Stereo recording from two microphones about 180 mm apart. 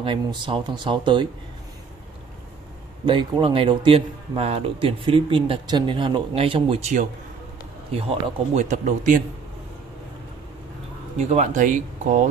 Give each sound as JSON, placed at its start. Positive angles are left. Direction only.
{"t": 0.0, "sound": "speech", "side_deg": -30}
{"t": 3.1, "sound": "speech", "side_deg": -30}
{"t": 11.1, "sound": "speech", "side_deg": -40}